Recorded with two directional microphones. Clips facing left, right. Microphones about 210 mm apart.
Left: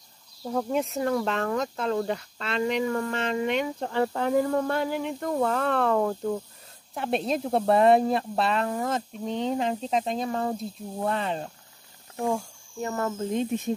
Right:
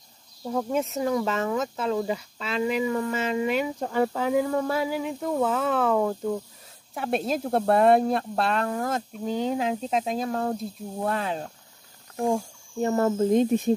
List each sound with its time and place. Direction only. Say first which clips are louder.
0.5 s speech: right 1 dB; centre (ahead or behind)
12.8 s speech: right 7 dB; 30° right (ahead or behind)